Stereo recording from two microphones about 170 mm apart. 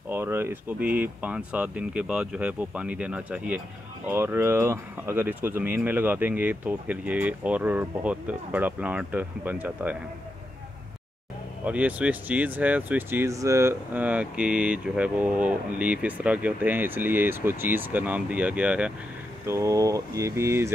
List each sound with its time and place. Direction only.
0.1 s speech: 15° right (ahead or behind)
11.6 s speech: 10° right (ahead or behind)
19.4 s speech: 20° right (ahead or behind)